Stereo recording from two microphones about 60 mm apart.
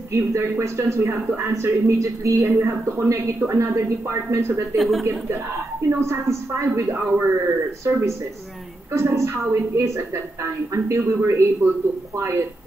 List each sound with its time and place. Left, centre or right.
0.1 s speech: right
4.7 s speech: centre
5.3 s speech: right
6.7 s speech: right
7.8 s speech: right